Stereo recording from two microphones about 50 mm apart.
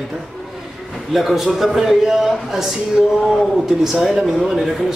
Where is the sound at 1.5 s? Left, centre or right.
Centre.